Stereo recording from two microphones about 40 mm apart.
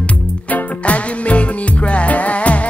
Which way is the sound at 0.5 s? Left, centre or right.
Left.